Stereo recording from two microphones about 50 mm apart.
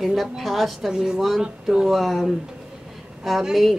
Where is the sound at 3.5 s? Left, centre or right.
Centre.